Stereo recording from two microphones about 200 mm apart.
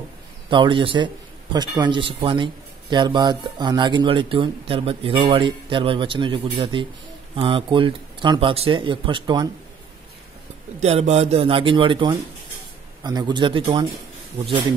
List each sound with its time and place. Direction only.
0.5 s a man's voice: 25° right (ahead or behind)
10.8 s a man's voice: 30° right (ahead or behind)